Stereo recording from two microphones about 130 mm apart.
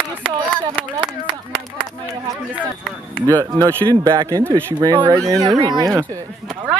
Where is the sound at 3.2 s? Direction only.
25° right (ahead or behind).